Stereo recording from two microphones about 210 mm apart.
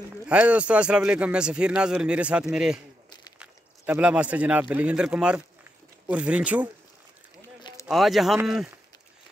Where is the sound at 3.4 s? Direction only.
5° right (ahead or behind).